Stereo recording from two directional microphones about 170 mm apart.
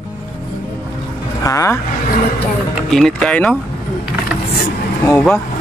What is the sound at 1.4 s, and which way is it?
Speech, 20° left (ahead or behind).